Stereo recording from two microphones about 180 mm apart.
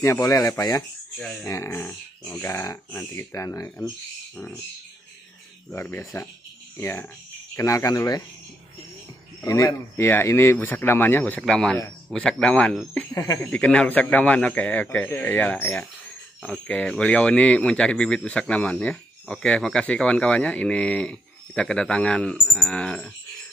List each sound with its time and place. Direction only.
0.0 s speech: 15° left (ahead or behind)
1.1 s speech: centre (ahead or behind)
1.4 s speech: 15° left (ahead or behind)
5.7 s speech: 10° left (ahead or behind)
9.4 s speech: 20° left (ahead or behind)